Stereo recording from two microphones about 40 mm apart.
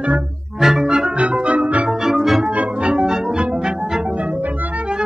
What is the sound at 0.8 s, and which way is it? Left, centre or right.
Organ, right.